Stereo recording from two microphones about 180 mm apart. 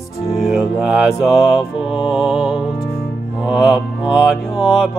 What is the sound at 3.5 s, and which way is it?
Mantra, 5° right (ahead or behind).